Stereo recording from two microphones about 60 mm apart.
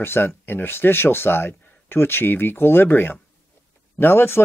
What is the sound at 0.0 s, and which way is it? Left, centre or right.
Speech, left.